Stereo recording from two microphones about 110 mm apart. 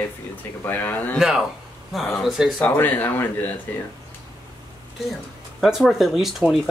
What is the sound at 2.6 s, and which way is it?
Speech, 25° left (ahead or behind).